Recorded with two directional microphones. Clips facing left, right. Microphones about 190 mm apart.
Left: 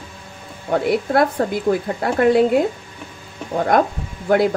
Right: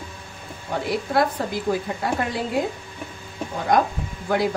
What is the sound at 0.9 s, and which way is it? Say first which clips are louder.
A woman's voice: left 3 dB; 55° left (ahead or behind).